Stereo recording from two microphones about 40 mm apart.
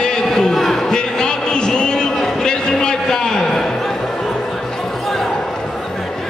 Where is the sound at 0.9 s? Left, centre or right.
Centre.